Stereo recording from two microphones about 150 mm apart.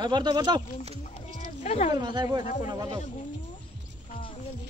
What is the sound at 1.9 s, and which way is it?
Speech, 30° right (ahead or behind).